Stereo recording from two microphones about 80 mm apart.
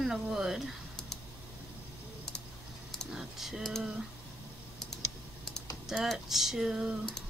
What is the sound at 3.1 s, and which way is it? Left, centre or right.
Typing, centre.